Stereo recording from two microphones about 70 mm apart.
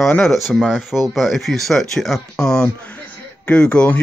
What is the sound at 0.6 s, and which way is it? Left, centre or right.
Speech, centre.